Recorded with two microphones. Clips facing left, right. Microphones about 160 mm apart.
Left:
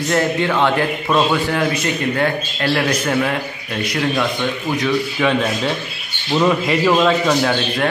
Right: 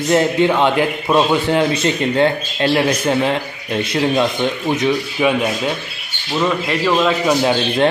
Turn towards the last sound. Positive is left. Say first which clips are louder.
# right 3 dB
turn(degrees=-20)  # may be behind; listen again after turning